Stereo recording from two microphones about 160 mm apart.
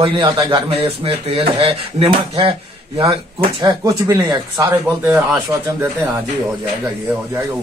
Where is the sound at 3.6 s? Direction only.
20° right (ahead or behind).